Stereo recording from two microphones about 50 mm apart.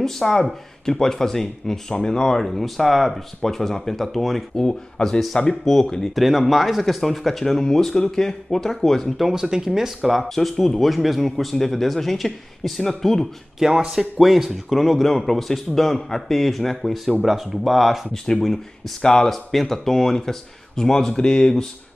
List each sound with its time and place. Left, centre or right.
0.0 s speech: centre
4.6 s speech: centre
6.1 s speech: centre
9.2 s speech: centre
10.2 s speech: centre
13.6 s speech: centre
18.1 s speech: centre